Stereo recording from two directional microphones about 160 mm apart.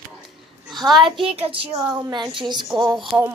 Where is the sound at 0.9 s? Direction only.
30° right (ahead or behind).